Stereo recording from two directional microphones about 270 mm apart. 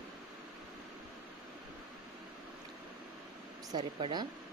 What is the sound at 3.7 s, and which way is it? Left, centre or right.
Speech, centre.